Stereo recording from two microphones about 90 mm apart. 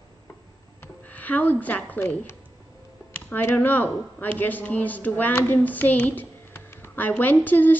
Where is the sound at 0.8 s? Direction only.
20° left (ahead or behind).